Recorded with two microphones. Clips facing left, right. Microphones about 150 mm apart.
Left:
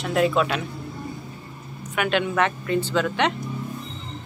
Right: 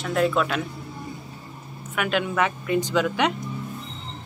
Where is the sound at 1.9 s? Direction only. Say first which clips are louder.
Left 2 dB; centre (ahead or behind).